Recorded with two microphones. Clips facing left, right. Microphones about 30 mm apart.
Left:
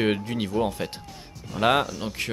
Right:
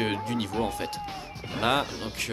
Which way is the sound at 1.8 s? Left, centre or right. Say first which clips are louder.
Left 3 dB; right.